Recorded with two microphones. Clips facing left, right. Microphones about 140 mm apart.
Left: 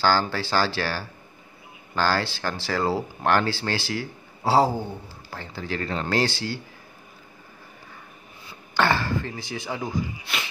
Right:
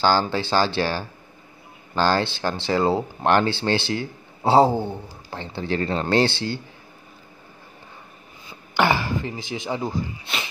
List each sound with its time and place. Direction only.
0.0 s speech: 20° right (ahead or behind)
8.7 s speech: 15° right (ahead or behind)